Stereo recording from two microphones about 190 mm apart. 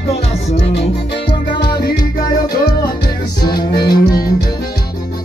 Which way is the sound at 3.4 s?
20° left (ahead or behind).